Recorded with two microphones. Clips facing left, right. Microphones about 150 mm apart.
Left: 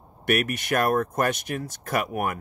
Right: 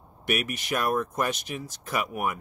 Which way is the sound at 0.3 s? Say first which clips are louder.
Left 4 dB; 55° left (ahead or behind).